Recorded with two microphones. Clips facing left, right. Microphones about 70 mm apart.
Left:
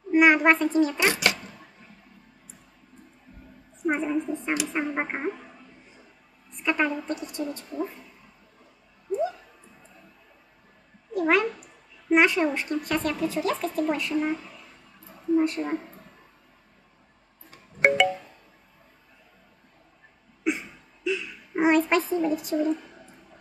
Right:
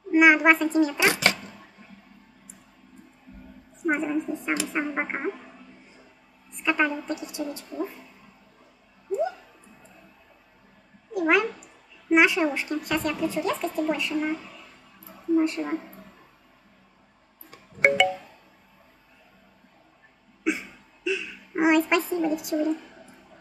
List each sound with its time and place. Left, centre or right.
0.1 s a woman's voice: centre
0.9 s a child's voice: centre
1.4 s a sound: centre
3.8 s a woman's voice: centre
6.6 s a woman's voice: centre
11.1 s speech: centre
17.7 s music: centre
20.4 s a sound: centre
22.2 s a woman's voice: centre